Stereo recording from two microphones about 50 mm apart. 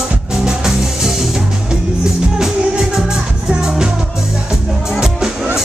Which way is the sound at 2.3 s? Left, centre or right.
Centre.